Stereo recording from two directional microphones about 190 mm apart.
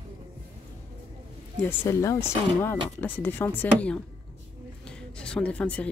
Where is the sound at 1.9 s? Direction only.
15° left (ahead or behind).